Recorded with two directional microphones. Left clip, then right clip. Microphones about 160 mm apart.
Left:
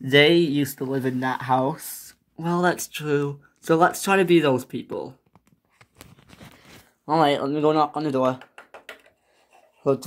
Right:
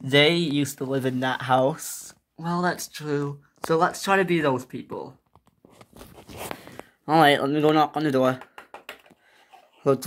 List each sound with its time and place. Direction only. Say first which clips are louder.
0.0 s speech: left 3 dB; 10° left (ahead or behind)
2.3 s speech: left 3 dB; 35° left (ahead or behind)
4.3 s speech: left 4 dB; 75° left (ahead or behind)
7.1 s speech: right 2 dB; 15° right (ahead or behind)